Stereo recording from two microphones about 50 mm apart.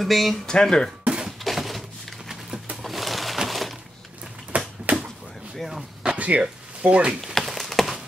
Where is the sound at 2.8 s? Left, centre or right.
Centre.